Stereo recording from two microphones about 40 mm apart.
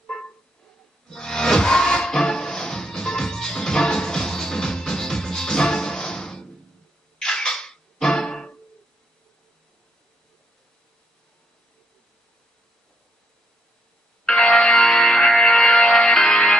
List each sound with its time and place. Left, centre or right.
1.0 s music: centre
14.2 s music: left